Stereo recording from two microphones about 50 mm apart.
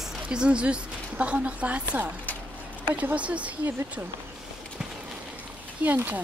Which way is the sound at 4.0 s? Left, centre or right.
Right.